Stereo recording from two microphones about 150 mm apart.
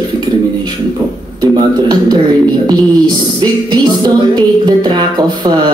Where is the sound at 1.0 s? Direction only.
25° right (ahead or behind).